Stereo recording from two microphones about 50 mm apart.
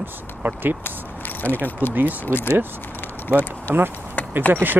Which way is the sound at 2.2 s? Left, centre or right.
Left.